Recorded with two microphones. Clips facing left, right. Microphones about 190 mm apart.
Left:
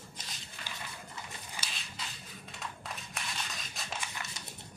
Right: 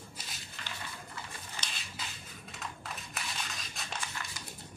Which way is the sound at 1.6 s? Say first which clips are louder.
Even; 10° left (ahead or behind).